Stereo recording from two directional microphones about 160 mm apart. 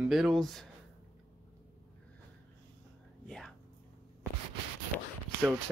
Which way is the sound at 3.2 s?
5° left (ahead or behind).